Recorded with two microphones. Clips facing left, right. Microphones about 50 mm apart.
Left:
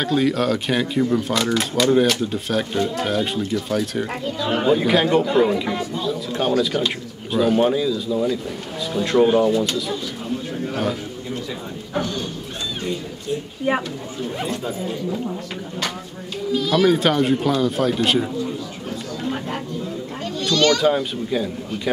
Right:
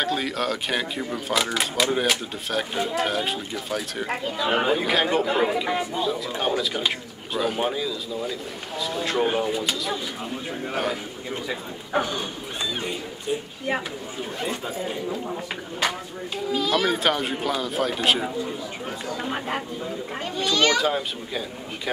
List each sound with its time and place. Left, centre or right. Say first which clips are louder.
0.0 s speech: left 6 dB; centre
4.7 s speech: left 5 dB; centre
11.9 s speech: even; centre
14.5 s speech: left 3 dB; centre
16.5 s speech: left 6 dB; centre
19.2 s speech: left 3 dB; centre
20.2 s children playing: left 4 dB; centre
20.8 s speech: left 6 dB; centre